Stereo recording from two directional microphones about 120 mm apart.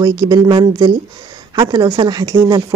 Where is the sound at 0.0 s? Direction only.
35° right (ahead or behind).